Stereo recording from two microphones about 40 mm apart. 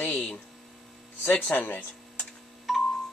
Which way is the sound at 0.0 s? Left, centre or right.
Left.